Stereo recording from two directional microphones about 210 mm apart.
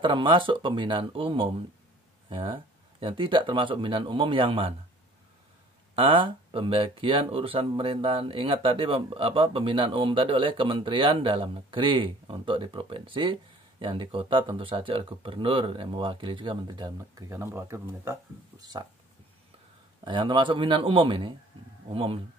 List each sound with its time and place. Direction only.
0.0 s speech: 25° right (ahead or behind)
5.9 s speech: 25° right (ahead or behind)
20.1 s speech: 20° right (ahead or behind)